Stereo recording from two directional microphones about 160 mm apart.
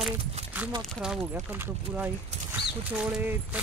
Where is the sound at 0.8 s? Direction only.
5° right (ahead or behind).